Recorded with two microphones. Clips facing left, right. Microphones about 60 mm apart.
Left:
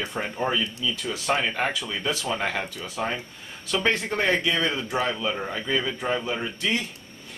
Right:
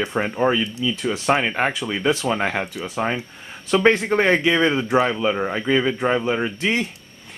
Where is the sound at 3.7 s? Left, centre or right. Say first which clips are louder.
Right 8 dB; right.